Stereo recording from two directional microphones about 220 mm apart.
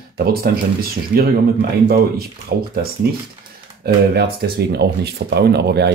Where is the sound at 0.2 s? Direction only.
45° right (ahead or behind).